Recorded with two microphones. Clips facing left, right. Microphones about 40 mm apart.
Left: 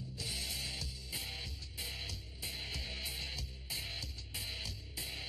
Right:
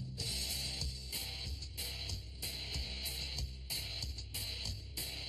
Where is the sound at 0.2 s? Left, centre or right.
Centre.